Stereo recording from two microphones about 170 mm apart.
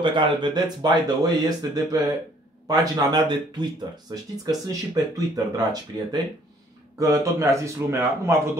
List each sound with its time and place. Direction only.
0.0 s a man's voice: 30° right (ahead or behind)